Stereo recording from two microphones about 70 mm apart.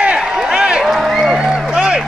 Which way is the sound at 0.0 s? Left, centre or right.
Centre.